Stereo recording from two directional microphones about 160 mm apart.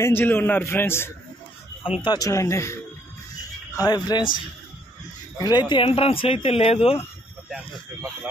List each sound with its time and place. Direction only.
0.0 s a man's voice: 15° left (ahead or behind)
1.8 s speech: 35° left (ahead or behind)
5.4 s speech: 25° left (ahead or behind)